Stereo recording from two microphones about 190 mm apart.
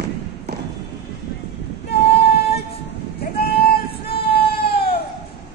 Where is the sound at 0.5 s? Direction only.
60° right (ahead or behind).